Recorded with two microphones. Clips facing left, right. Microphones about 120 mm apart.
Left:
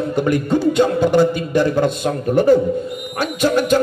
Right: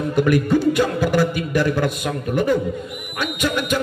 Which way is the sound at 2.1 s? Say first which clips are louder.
Left 7 dB; 35° left (ahead or behind).